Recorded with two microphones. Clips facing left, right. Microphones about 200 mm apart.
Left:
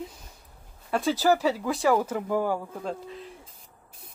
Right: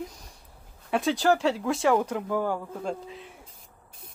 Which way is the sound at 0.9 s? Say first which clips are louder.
Even; centre (ahead or behind).